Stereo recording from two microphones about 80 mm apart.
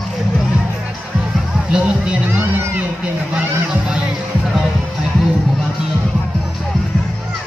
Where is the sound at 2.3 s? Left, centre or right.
Right.